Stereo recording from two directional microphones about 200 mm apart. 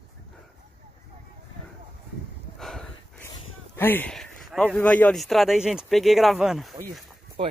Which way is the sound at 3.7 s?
10° left (ahead or behind).